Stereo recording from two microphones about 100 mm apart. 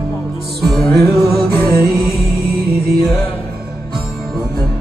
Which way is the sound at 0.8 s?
25° left (ahead or behind).